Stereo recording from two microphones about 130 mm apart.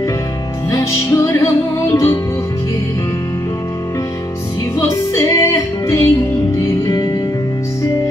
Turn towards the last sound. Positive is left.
turn(degrees=30)  # may be behind; listen again after turning